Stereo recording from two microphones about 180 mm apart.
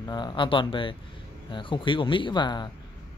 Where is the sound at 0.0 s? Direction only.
25° left (ahead or behind).